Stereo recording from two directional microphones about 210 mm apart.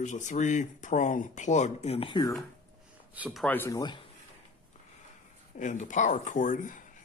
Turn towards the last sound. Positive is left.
turn(degrees=35)  # may be behind; listen again after turning